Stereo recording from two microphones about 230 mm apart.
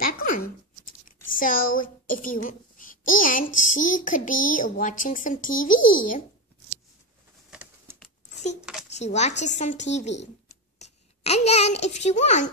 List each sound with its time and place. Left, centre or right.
1.0 s speech: left
8.9 s a woman's voice: left